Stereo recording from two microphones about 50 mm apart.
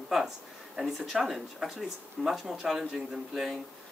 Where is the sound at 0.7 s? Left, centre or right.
Centre.